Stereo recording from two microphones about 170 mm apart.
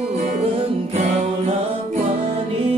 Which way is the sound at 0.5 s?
40° right (ahead or behind).